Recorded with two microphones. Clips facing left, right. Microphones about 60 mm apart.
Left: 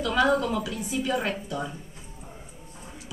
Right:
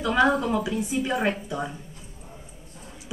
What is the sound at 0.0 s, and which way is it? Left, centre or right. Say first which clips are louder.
A woman's voice: right 1 dB; right.